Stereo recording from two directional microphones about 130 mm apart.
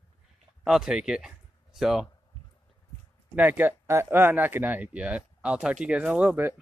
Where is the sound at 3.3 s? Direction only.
15° right (ahead or behind).